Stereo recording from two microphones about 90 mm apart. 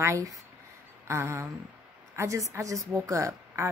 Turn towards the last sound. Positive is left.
turn(degrees=-35)  # may be behind; listen again after turning